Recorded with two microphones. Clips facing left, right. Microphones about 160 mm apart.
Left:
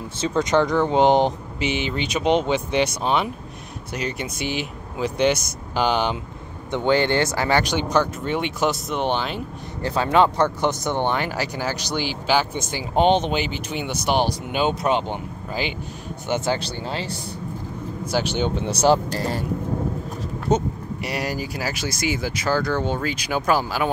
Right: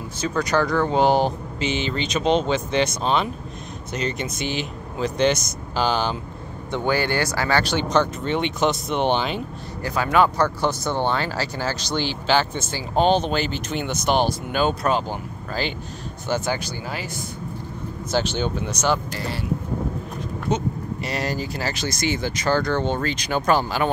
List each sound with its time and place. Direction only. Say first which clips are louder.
0.2 s speech: left 2 dB; 25° left (ahead or behind); by 9.4 s centre (ahead or behind)
9.8 s speech: left 1 dB; 30° left (ahead or behind)
18.1 s speech: even; 15° left (ahead or behind); by 19.4 s 40° left (ahead or behind)
20.2 s a sound: left 4 dB; 40° left (ahead or behind)
21.0 s speech: even; 10° left (ahead or behind)